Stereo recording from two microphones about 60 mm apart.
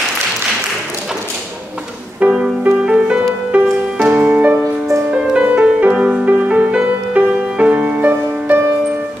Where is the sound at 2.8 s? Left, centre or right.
Centre.